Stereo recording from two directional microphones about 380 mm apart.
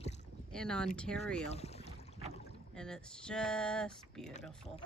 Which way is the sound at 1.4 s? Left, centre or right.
Centre.